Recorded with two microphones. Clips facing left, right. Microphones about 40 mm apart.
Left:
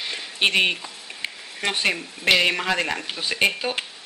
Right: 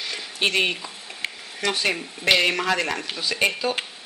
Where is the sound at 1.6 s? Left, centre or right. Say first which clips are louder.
Even; left.